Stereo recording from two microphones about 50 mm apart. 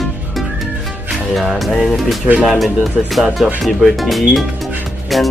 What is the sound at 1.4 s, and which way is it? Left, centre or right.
Speech, centre.